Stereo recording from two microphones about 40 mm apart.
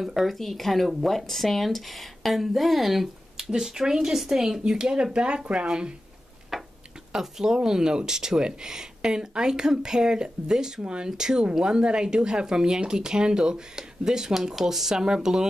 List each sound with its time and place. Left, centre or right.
0.0 s speech: centre; by 5.9 s right
6.5 s a sound: centre
7.2 s speech: centre